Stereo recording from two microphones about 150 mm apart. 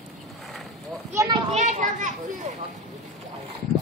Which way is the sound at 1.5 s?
50° right (ahead or behind).